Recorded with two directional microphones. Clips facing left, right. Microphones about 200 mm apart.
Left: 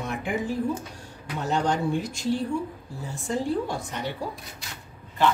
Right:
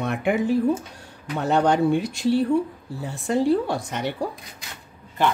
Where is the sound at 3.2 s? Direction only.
70° right (ahead or behind).